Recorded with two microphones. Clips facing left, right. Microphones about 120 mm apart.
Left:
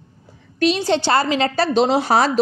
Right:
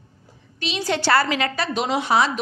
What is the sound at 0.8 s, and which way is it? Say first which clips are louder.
A woman's voice: left 2 dB; 25° left (ahead or behind).